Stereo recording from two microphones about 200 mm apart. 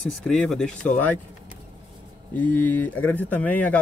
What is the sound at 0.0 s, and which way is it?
Speech, centre (ahead or behind).